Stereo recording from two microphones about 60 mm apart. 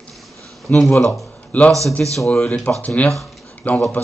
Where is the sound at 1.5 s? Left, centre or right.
Left.